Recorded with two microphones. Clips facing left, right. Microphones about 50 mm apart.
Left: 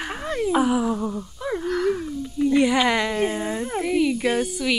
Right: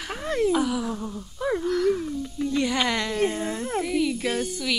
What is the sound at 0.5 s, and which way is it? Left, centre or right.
Speech, left.